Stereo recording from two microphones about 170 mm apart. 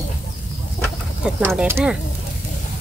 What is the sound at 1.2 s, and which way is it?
Speech, 5° right (ahead or behind).